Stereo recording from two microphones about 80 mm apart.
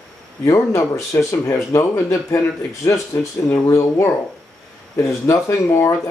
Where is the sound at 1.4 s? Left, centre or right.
Left.